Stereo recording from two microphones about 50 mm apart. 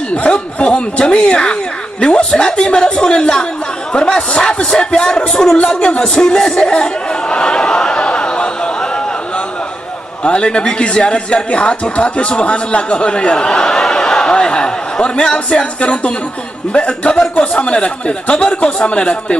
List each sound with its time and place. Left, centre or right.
0.1 s speech: left
5.7 s a sound: centre
10.2 s a man's voice: centre